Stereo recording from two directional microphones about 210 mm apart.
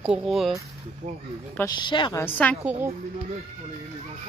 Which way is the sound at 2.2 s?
5° left (ahead or behind).